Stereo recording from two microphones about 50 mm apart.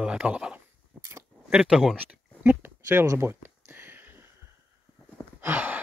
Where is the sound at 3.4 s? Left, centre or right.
Right.